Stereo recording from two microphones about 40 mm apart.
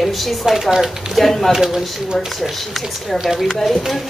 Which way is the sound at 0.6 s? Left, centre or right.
Centre.